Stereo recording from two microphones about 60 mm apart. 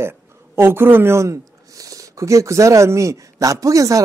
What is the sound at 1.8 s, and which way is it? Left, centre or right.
Speech, right.